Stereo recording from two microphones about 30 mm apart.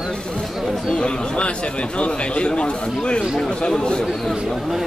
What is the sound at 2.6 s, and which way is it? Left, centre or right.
Speech, left.